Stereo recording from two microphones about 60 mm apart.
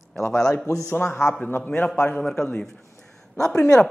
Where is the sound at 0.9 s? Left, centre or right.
Left.